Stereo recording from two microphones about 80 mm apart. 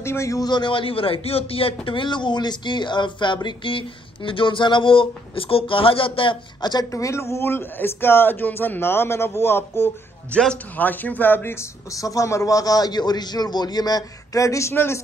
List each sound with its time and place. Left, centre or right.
0.0 s a man's voice: left
0.4 s speech: left
1.9 s speech: left
3.4 s speech: left
6.9 s a man's voice: left
10.3 s a man's voice: centre
10.8 s a man's voice: left
11.9 s a man's voice: left
14.7 s a man's voice: left